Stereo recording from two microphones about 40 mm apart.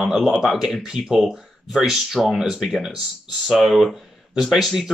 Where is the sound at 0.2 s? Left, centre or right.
Centre.